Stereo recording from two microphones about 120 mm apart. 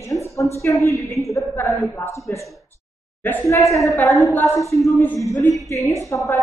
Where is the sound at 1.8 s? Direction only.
25° left (ahead or behind).